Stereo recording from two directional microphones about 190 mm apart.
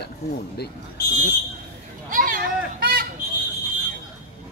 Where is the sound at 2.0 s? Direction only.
45° right (ahead or behind).